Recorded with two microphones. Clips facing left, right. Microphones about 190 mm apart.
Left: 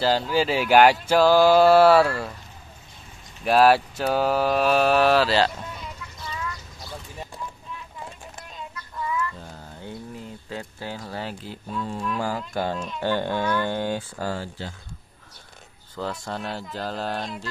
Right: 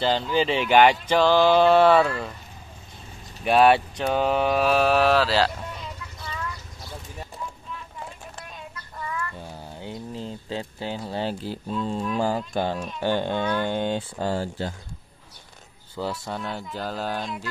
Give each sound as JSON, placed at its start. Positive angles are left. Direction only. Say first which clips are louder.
{"t": 0.0, "sound": "speech", "louder": "left 1 dB", "side_deg": 5}
{"t": 3.4, "sound": "speech", "louder": "even", "side_deg": 0}
{"t": 9.4, "sound": "speech", "louder": "right 2 dB", "side_deg": -15}
{"t": 16.0, "sound": "speech", "louder": "right 1 dB", "side_deg": -10}